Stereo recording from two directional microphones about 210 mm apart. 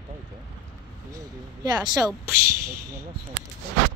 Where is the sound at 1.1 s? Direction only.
20° right (ahead or behind).